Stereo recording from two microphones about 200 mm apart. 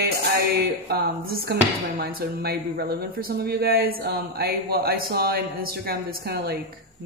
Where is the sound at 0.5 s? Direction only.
50° right (ahead or behind).